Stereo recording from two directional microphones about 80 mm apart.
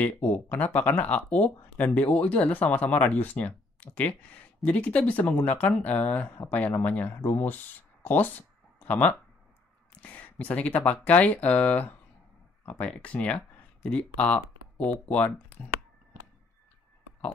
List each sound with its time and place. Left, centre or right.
0.0 s speech: centre
9.9 s a sound: centre
10.9 s speech: centre